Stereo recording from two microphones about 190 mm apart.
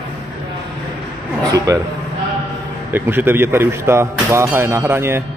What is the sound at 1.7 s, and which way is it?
Speech, 15° right (ahead or behind).